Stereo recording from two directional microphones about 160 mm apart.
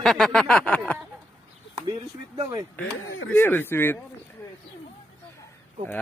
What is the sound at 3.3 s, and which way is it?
Speech, 15° left (ahead or behind).